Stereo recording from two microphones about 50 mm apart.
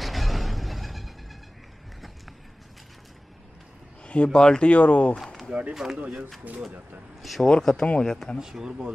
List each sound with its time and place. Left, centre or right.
0.0 s a sound: centre
4.0 s speech: left
5.5 s speech: centre
7.2 s speech: centre
7.4 s speech: centre
8.4 s speech: centre